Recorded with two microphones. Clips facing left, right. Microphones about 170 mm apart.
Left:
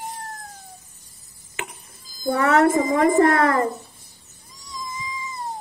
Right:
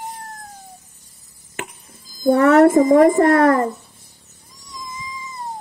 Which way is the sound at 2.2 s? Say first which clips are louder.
Right 6 dB; 50° right (ahead or behind).